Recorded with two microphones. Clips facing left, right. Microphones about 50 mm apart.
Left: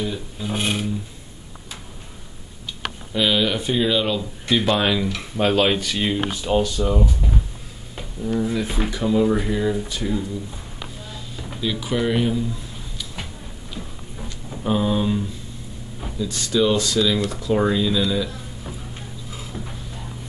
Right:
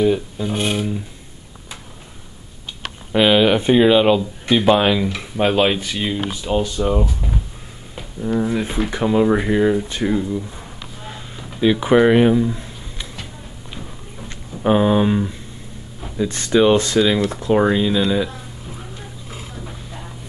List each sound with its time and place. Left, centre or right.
0.5 s speech: centre
3.1 s speech: right
4.5 s speech: centre
5.9 s speech: centre
6.6 s speech: right
7.1 s speech: centre
8.2 s speech: right
11.1 s a sound: right
11.6 s speech: right
14.6 s speech: right